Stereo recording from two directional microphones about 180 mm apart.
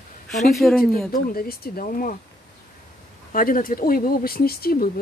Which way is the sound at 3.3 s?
50° left (ahead or behind).